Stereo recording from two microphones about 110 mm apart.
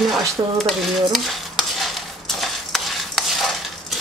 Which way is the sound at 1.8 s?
Centre (ahead or behind).